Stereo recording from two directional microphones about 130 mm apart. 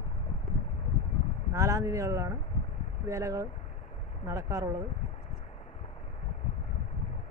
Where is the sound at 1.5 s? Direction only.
25° right (ahead or behind).